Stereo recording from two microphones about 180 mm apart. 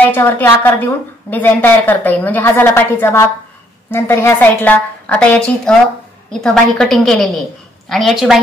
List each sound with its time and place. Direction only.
0.1 s a woman's voice: 10° left (ahead or behind)